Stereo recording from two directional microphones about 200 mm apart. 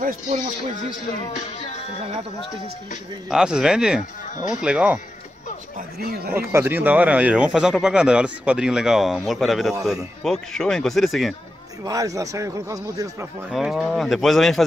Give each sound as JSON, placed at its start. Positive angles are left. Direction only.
{"t": 3.3, "sound": "speech", "side_deg": -5}
{"t": 5.8, "sound": "speech", "side_deg": -50}
{"t": 6.3, "sound": "speech", "side_deg": -10}
{"t": 11.8, "sound": "a man's voice", "side_deg": -15}
{"t": 13.5, "sound": "speech", "side_deg": 0}